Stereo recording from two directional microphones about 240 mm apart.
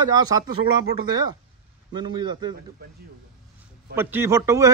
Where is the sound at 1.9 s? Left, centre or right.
Centre.